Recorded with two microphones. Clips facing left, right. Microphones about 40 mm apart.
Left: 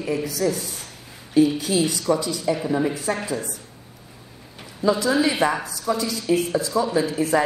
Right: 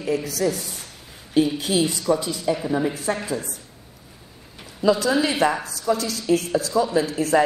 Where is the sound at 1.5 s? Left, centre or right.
Right.